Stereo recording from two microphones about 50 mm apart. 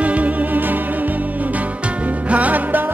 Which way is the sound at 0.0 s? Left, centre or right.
Right.